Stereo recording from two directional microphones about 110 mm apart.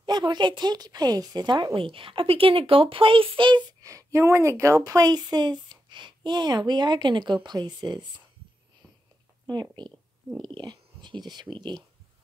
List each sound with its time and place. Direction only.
0.0 s speech: 40° right (ahead or behind)
1.8 s speech: 55° right (ahead or behind)
3.8 s speech: 30° right (ahead or behind)
9.5 s speech: 40° right (ahead or behind)